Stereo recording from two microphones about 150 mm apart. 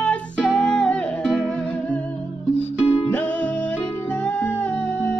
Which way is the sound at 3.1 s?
10° left (ahead or behind).